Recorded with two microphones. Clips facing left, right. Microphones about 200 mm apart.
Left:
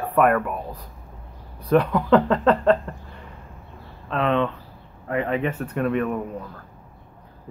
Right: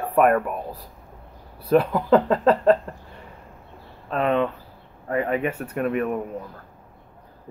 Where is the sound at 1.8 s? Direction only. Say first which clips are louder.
Left 1 dB; 25° right (ahead or behind).